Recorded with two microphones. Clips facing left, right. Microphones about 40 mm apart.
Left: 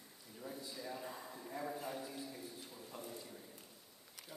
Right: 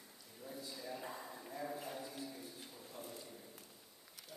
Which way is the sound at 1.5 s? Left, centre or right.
Centre.